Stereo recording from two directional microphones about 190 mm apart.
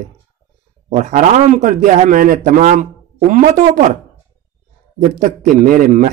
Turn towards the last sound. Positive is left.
turn(degrees=-45)  # may be behind; listen again after turning